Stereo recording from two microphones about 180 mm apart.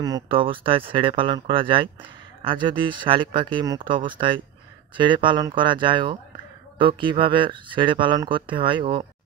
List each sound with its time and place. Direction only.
0.0 s speech: 25° right (ahead or behind)